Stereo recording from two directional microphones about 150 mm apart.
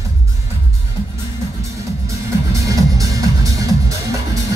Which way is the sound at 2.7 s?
25° right (ahead or behind).